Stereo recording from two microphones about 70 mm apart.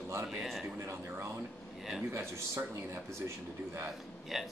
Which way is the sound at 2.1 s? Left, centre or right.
Right.